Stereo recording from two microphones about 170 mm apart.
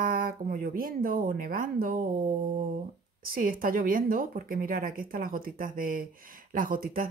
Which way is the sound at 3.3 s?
60° right (ahead or behind).